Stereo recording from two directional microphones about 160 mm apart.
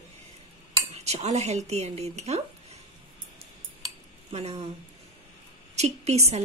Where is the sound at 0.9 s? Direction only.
40° right (ahead or behind).